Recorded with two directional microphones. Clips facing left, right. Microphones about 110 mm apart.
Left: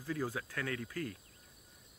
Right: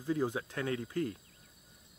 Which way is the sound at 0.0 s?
20° right (ahead or behind).